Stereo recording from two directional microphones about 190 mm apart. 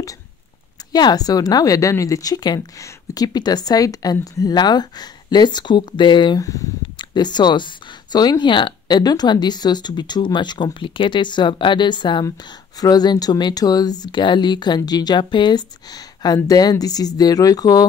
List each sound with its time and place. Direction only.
0.9 s speech: 20° left (ahead or behind)